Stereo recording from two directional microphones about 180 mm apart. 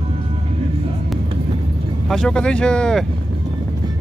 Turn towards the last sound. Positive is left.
turn(degrees=5)  # may be behind; listen again after turning